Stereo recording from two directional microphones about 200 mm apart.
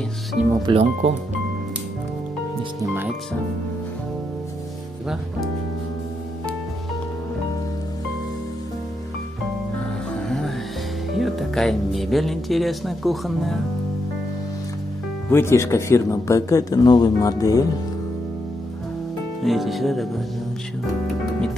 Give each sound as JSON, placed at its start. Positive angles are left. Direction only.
{"t": 0.5, "sound": "speech", "side_deg": -20}
{"t": 2.8, "sound": "speech", "side_deg": -10}
{"t": 10.2, "sound": "music", "side_deg": 0}
{"t": 11.1, "sound": "speech", "side_deg": 0}
{"t": 15.2, "sound": "speech", "side_deg": 10}
{"t": 19.4, "sound": "speech", "side_deg": 0}